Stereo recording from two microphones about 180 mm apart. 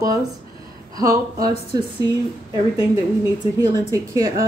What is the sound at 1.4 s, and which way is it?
Speech, 20° right (ahead or behind).